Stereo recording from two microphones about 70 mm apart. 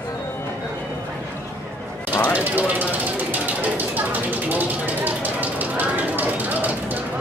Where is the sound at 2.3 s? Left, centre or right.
Right.